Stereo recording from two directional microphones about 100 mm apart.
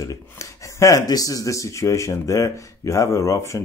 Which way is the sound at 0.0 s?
30° left (ahead or behind).